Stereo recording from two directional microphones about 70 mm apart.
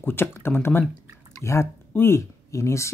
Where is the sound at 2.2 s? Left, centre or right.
Left.